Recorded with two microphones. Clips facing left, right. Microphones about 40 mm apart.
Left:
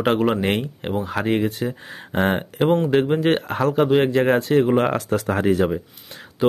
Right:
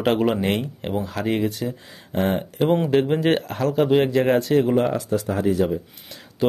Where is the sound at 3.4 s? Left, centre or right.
Left.